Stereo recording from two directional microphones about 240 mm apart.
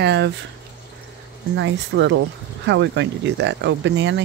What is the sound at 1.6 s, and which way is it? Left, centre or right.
Speech, right.